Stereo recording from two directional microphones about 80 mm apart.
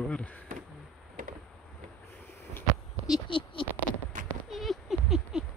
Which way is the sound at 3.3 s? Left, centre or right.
Left.